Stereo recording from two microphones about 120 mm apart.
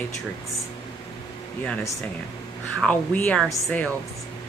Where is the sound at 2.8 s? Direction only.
10° left (ahead or behind).